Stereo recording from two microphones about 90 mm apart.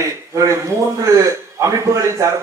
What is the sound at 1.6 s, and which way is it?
Speech, 30° right (ahead or behind).